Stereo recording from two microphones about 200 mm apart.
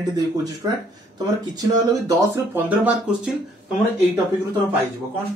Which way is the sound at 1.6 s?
15° right (ahead or behind).